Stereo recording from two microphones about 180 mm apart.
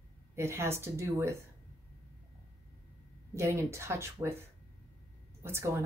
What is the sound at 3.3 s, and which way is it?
Speech, 15° right (ahead or behind).